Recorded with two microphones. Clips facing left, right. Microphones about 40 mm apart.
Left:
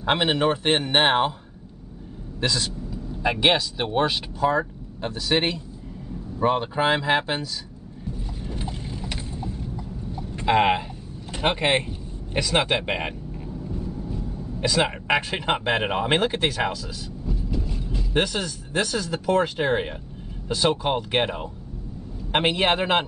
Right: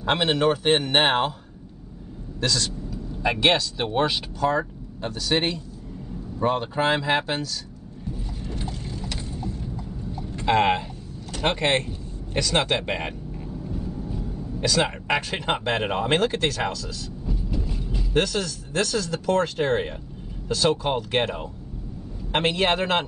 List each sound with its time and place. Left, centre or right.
0.0 s speech: centre
2.4 s speech: centre
8.1 s mechanisms: centre
9.6 s clip-clop: centre
10.3 s speech: centre
13.5 s vehicle: centre
14.6 s speech: centre
17.3 s train: centre
18.1 s speech: centre